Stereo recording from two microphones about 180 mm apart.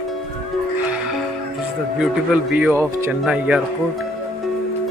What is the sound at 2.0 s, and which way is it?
A man's voice, 5° right (ahead or behind).